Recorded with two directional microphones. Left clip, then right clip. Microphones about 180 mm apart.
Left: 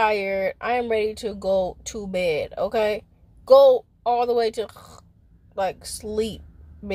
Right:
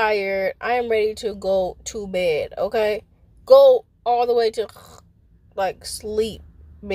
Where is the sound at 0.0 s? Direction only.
Centre (ahead or behind).